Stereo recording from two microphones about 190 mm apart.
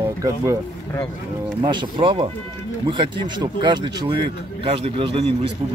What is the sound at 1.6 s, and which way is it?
Speech, 25° right (ahead or behind).